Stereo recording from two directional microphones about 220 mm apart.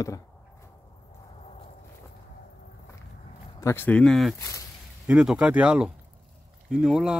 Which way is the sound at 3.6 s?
10° left (ahead or behind).